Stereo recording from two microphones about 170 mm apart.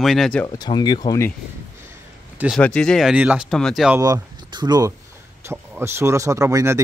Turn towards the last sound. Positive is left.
turn(degrees=-15)  # may be behind; listen again after turning